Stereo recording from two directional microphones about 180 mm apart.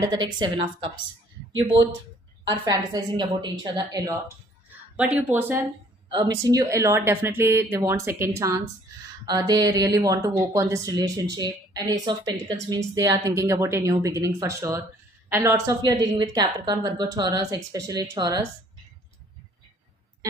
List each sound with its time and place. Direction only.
0.4 s a woman's voice: 25° right (ahead or behind)
2.5 s a woman's voice: 20° right (ahead or behind)
4.9 s a woman's voice: 10° right (ahead or behind)
6.0 s a woman's voice: 25° right (ahead or behind)